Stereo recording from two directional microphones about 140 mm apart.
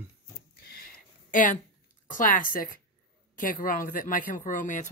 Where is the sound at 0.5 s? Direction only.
90° left; by 1.6 s 75° left (ahead or behind).